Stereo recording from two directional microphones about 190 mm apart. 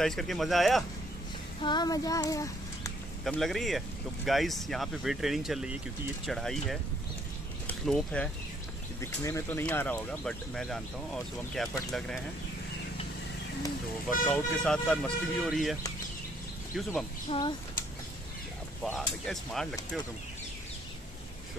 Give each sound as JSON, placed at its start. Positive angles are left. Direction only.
{"t": 0.0, "sound": "speech", "side_deg": 0}
{"t": 1.6, "sound": "child singing", "side_deg": 20}
{"t": 3.3, "sound": "speech", "side_deg": 0}
{"t": 14.2, "sound": "speech", "side_deg": 5}
{"t": 17.3, "sound": "speech", "side_deg": 25}
{"t": 18.9, "sound": "speech", "side_deg": 0}